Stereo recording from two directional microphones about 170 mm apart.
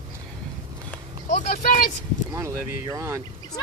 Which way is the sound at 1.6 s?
55° left (ahead or behind).